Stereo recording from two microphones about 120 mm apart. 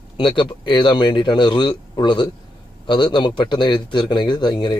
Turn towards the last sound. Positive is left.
turn(degrees=40)  # may be behind; listen again after turning